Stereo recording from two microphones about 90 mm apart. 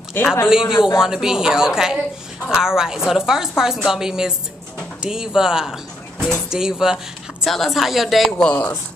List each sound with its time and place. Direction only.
0.2 s speech: 20° left (ahead or behind)
0.5 s a woman's voice: 5° right (ahead or behind); by 8.7 s 10° left (ahead or behind)